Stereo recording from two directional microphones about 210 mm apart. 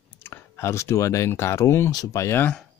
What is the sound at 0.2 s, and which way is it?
Speech, 10° left (ahead or behind).